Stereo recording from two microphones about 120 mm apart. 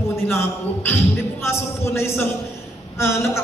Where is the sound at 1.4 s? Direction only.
20° left (ahead or behind).